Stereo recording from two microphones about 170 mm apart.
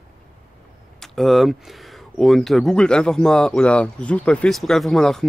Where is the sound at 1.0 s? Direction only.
Centre (ahead or behind).